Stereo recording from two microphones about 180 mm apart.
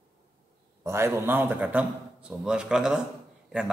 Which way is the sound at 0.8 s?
15° right (ahead or behind).